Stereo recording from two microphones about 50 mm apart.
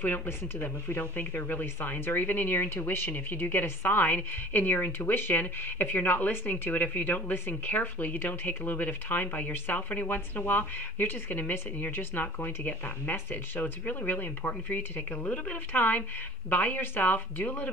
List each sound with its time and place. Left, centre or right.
0.4 s speech: left